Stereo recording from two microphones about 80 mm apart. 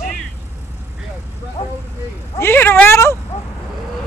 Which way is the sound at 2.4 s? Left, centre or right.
Left.